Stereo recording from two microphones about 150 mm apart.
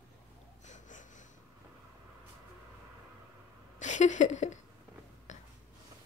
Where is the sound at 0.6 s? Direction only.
55° left (ahead or behind).